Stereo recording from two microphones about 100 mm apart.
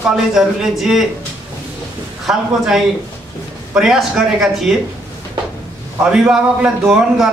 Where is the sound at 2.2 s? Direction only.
5° right (ahead or behind).